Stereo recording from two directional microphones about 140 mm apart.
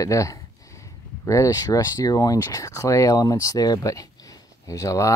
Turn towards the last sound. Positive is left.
turn(degrees=25)  # may be behind; listen again after turning